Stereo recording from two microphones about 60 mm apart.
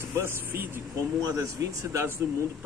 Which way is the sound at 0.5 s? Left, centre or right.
Right.